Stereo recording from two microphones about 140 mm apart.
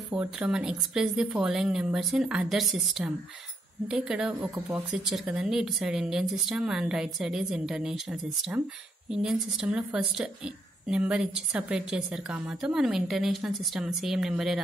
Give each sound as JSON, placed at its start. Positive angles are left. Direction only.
{"t": 0.1, "sound": "a woman's voice", "side_deg": -10}